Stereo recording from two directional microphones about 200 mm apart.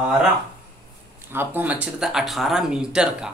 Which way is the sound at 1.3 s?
10° right (ahead or behind).